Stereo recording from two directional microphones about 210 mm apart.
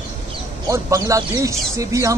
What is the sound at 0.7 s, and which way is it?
Speech, 15° right (ahead or behind).